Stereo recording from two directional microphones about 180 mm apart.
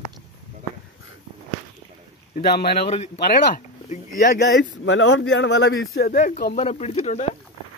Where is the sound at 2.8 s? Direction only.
35° left (ahead or behind).